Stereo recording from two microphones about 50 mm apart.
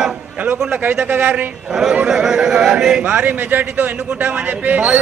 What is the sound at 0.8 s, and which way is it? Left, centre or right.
Speech, right.